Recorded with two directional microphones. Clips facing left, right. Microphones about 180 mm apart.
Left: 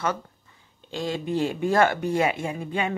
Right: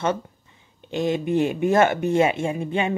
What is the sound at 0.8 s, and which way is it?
Speech, 20° right (ahead or behind).